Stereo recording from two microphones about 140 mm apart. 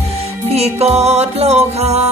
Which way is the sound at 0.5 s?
50° right (ahead or behind).